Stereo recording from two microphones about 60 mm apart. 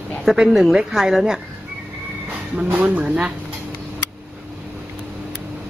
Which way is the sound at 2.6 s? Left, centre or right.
Right.